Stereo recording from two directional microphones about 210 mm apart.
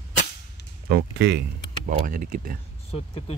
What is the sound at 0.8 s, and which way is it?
Speech, 50° right (ahead or behind).